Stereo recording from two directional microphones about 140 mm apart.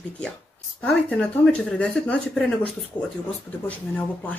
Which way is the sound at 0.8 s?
5° left (ahead or behind).